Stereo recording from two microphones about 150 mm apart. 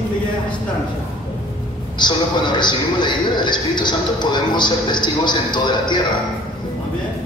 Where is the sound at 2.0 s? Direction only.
30° left (ahead or behind).